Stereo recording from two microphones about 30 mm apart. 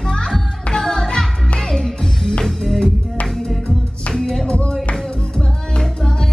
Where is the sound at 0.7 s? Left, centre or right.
Left.